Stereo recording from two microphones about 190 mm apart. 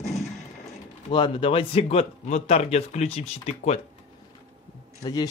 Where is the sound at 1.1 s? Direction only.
25° left (ahead or behind).